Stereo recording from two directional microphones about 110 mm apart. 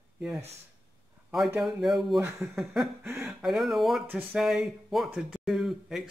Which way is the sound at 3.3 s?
5° right (ahead or behind).